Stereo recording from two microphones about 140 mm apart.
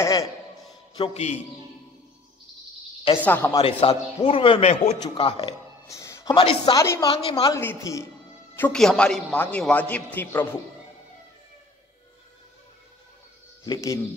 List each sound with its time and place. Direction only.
0.0 s a sound: 20° left (ahead or behind)
0.9 s a man's voice: 45° left (ahead or behind)
3.2 s a man's voice: 15° left (ahead or behind)
3.6 s a man's voice: 45° left (ahead or behind)
5.9 s music: 20° left (ahead or behind)
6.3 s speech: 35° left (ahead or behind)
6.8 s a woman's voice: 20° left (ahead or behind)
7.1 s speech: 40° left (ahead or behind)
7.5 s a woman's voice: 20° left (ahead or behind)
8.5 s a man's voice: 5° left (ahead or behind)
13.7 s a woman's voice: 25° left (ahead or behind)